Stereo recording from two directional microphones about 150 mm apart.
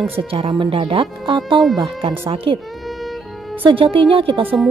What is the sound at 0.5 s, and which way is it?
Speech, 35° right (ahead or behind).